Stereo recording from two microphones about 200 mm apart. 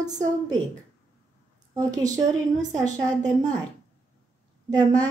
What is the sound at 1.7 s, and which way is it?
Speech, 15° right (ahead or behind).